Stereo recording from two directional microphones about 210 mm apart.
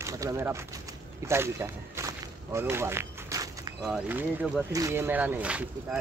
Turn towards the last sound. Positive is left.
turn(degrees=-5)  # may be behind; listen again after turning